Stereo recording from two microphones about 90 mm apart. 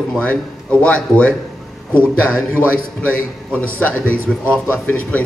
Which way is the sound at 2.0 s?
20° right (ahead or behind).